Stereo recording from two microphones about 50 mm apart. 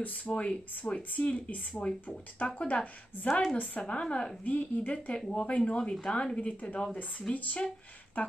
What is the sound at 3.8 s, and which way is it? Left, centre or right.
Speech, left.